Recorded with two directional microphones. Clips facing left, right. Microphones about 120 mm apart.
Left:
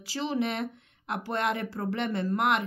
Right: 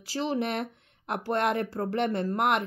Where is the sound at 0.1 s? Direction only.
45° right (ahead or behind).